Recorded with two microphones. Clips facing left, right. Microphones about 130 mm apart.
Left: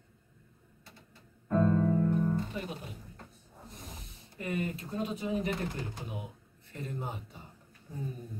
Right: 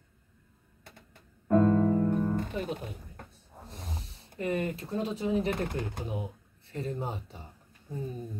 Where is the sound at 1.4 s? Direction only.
50° right (ahead or behind).